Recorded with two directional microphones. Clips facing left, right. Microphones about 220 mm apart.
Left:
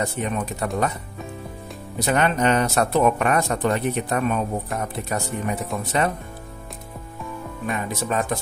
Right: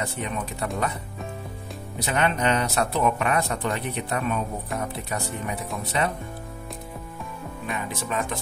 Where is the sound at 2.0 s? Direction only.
45° left (ahead or behind).